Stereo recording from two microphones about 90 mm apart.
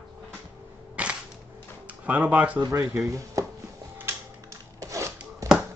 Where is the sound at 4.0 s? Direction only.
35° right (ahead or behind).